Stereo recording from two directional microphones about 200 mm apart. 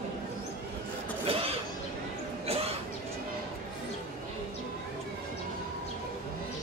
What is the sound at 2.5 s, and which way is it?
Cough, 30° right (ahead or behind).